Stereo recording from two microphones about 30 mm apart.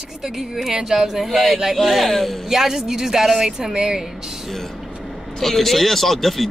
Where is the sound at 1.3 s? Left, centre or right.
Centre.